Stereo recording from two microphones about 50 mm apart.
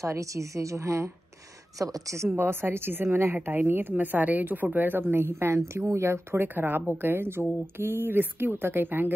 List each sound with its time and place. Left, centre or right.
0.0 s a woman's voice: right
2.3 s speech: right
5.9 s speech: right
6.4 s speech: right